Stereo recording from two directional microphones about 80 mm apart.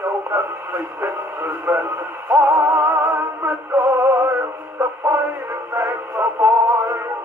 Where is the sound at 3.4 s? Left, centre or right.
Right.